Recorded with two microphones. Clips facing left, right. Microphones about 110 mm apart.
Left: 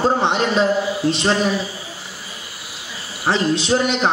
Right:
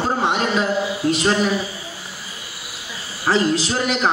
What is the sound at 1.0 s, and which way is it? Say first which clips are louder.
Speech: right 1 dB; 25° left (ahead or behind).